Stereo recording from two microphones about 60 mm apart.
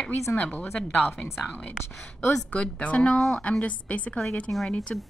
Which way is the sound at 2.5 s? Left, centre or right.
Left.